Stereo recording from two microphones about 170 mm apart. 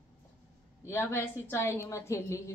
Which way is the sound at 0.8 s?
15° left (ahead or behind).